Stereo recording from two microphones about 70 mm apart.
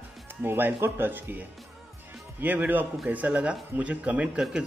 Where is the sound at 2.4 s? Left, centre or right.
Right.